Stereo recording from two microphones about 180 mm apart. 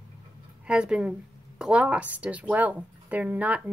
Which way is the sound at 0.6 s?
5° right (ahead or behind).